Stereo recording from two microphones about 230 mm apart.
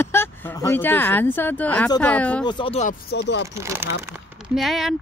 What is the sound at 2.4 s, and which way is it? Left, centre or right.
Speech, left.